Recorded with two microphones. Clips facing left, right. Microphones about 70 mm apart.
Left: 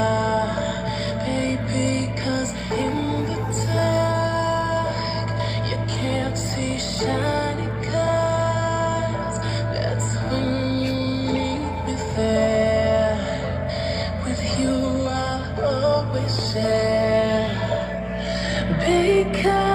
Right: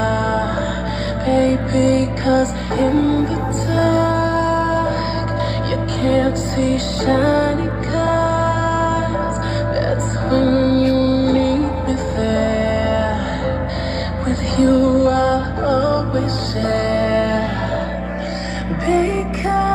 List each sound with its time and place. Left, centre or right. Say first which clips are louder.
0.0 s music: right 2 dB; right
6.0 s music: right 10 dB; right
10.3 s music: right 10 dB; right
14.6 s music: right 10 dB; right
18.9 s music: right 1 dB; centre